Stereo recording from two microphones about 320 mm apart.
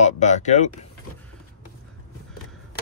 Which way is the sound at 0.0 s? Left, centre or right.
Left.